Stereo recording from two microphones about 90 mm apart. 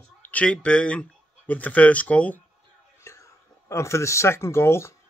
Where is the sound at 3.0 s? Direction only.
35° left (ahead or behind).